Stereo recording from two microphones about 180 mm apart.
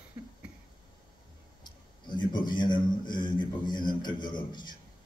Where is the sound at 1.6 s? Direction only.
25° left (ahead or behind).